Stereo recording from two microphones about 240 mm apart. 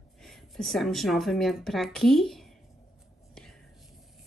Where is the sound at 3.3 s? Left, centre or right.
Centre.